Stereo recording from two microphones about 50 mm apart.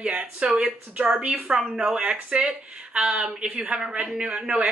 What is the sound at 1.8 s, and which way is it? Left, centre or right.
Speech, right.